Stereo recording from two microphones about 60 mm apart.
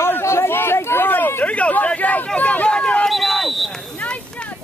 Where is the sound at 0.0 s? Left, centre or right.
Left.